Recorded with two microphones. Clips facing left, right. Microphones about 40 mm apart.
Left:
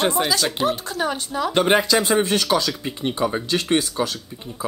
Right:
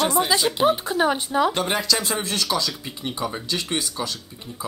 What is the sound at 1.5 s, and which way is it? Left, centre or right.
Speech, left.